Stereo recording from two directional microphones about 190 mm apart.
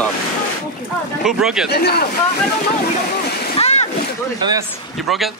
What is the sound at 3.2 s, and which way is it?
Splash, 60° left (ahead or behind).